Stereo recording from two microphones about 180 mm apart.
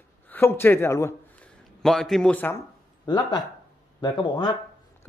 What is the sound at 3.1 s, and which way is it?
Speech, 25° left (ahead or behind).